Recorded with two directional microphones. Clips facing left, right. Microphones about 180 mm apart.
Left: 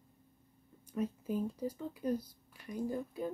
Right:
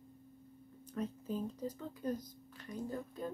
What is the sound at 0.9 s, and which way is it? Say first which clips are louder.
Speech: left 3 dB; 10° left (ahead or behind).